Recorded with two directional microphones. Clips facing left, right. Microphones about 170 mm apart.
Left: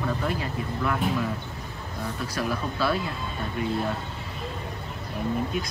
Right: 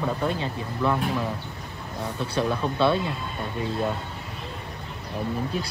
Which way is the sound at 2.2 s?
25° right (ahead or behind).